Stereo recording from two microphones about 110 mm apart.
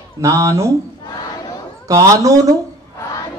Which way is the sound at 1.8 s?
30° right (ahead or behind).